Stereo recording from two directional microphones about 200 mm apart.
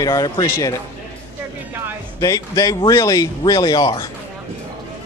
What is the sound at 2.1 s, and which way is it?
Speech, 15° left (ahead or behind).